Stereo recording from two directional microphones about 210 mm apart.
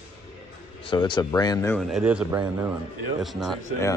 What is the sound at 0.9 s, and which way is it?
Speech, 20° left (ahead or behind).